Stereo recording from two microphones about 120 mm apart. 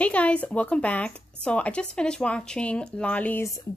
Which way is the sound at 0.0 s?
10° left (ahead or behind).